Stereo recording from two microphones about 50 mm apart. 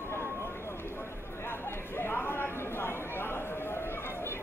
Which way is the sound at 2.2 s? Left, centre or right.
Left.